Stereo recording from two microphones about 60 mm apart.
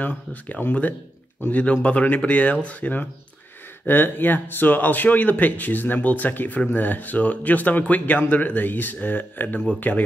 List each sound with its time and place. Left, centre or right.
0.0 s speech: left